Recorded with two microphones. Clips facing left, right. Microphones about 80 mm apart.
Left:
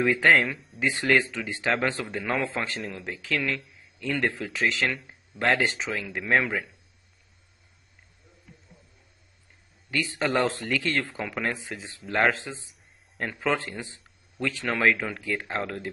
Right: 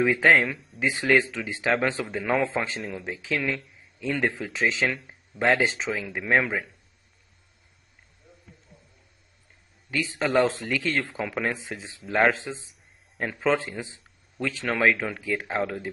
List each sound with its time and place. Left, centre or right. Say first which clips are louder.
0.0 s speech: right 1 dB; centre
0.5 s speech: even; centre
0.8 s speech: right 1 dB; centre
10.1 s speech: right 3 dB; centre
14.7 s speech: right 1 dB; centre